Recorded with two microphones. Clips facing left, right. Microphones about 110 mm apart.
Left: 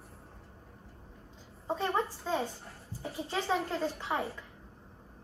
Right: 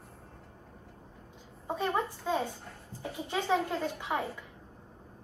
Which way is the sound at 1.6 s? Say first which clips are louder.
Even; 15° right (ahead or behind).